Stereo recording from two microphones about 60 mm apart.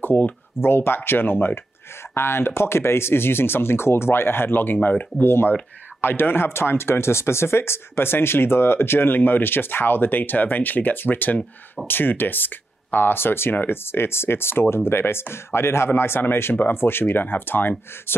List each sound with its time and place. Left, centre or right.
0.0 s speech: left
5.2 s speech: left